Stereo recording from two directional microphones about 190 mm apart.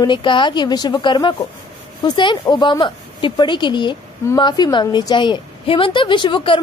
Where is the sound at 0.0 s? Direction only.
25° left (ahead or behind).